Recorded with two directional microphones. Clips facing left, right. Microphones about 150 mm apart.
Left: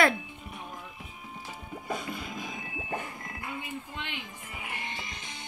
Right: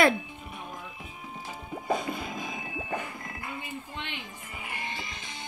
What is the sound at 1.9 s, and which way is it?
Music, 30° right (ahead or behind).